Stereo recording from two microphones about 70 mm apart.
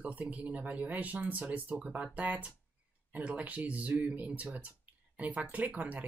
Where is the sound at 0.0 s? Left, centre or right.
Right.